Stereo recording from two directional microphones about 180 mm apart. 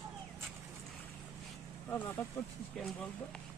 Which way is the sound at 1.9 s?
10° left (ahead or behind).